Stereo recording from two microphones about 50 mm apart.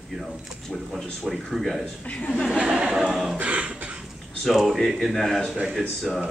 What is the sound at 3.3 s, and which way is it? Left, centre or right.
Beatboxing, right.